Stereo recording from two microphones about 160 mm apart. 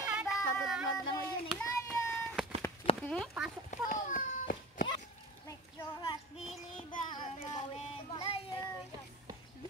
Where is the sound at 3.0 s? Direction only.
5° left (ahead or behind).